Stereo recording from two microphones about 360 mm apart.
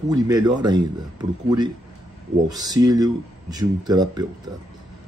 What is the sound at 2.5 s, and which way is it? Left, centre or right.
Speech, centre.